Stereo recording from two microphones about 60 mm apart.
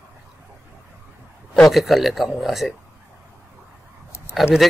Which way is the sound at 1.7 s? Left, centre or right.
Centre.